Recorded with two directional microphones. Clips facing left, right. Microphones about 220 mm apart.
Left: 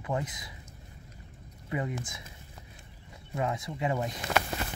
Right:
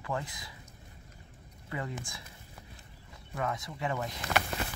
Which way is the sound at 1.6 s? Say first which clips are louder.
Left 5 dB; 20° left (ahead or behind).